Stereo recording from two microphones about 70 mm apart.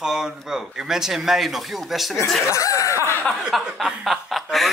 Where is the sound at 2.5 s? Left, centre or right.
Left.